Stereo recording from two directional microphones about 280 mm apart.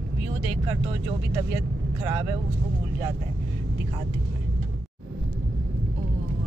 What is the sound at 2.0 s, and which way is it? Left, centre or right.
Speech, centre.